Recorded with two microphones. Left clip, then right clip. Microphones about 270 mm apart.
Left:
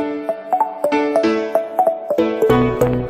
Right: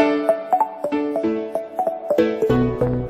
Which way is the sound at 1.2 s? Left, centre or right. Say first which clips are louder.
Left 6 dB; left.